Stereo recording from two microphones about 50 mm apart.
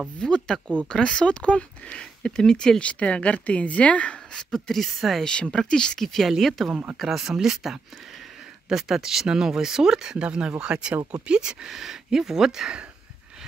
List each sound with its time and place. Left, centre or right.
0.2 s a woman's voice: centre
2.8 s a woman's voice: left; by 12.8 s centre